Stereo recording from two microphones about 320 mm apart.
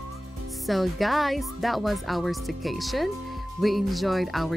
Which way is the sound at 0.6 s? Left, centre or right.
Centre.